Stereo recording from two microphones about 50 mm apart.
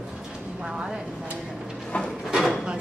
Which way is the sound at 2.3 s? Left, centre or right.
Centre.